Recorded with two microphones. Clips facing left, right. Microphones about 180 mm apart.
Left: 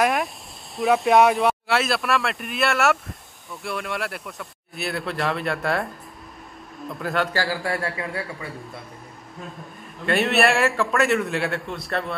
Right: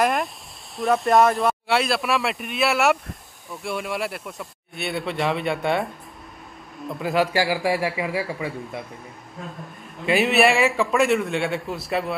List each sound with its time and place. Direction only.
0.0 s speech: centre (ahead or behind)
6.9 s speech: centre (ahead or behind)
7.3 s speech: 15° right (ahead or behind)
10.0 s speech: centre (ahead or behind)